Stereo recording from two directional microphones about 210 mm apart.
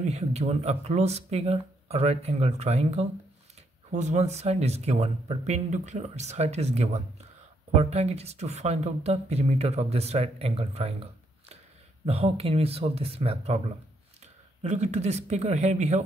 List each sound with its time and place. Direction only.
0.0 s speech: 30° right (ahead or behind)